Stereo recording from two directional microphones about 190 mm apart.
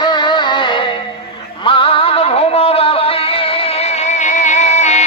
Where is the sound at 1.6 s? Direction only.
25° left (ahead or behind).